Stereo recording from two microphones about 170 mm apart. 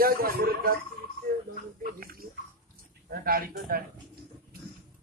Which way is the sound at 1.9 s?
55° right (ahead or behind).